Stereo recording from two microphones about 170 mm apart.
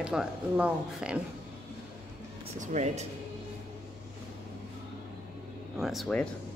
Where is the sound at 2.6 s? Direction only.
45° right (ahead or behind).